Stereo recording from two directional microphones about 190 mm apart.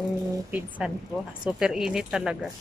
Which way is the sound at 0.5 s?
5° right (ahead or behind).